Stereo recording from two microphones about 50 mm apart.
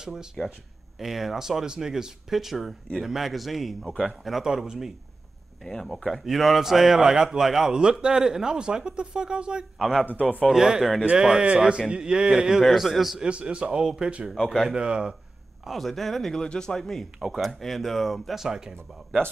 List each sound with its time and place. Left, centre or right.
0.0 s speech: centre
5.7 s speech: centre
9.8 s speech: centre
10.4 s speech: centre
12.6 s speech: centre
13.2 s speech: right
14.3 s speech: centre
14.7 s speech: centre
15.6 s speech: centre
18.4 s speech: centre